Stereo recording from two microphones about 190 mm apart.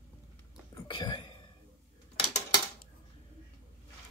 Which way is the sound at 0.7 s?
25° left (ahead or behind).